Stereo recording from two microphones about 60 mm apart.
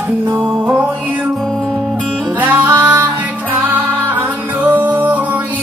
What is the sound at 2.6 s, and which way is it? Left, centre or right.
Music, right.